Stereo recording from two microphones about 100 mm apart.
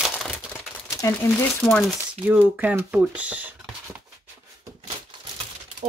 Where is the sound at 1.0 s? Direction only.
30° left (ahead or behind).